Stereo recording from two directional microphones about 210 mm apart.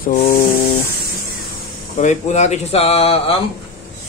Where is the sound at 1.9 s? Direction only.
35° left (ahead or behind).